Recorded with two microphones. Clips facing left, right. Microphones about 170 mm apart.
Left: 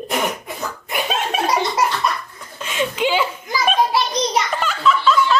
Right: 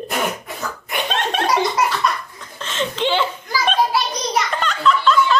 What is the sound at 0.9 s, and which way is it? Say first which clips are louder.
Chuckle: even; 5° left (ahead or behind).